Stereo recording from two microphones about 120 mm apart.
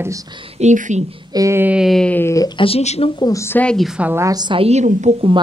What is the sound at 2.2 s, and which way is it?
Speech, 25° left (ahead or behind).